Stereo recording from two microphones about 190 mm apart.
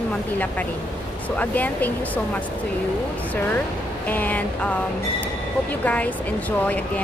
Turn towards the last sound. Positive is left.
turn(degrees=5)  # may be behind; listen again after turning